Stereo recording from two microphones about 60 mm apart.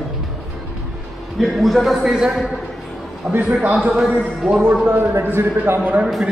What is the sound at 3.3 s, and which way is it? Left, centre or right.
Speech, right.